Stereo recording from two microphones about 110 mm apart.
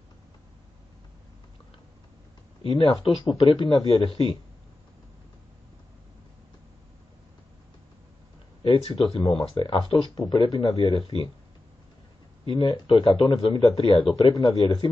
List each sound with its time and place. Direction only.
2.6 s speech: 55° left (ahead or behind)
8.6 s speech: 55° left (ahead or behind)
12.4 s speech: 50° left (ahead or behind)